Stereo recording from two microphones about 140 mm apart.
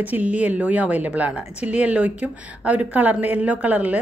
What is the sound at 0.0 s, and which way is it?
A woman's voice, 10° right (ahead or behind).